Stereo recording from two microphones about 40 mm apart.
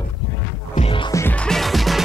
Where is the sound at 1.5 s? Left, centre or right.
Centre.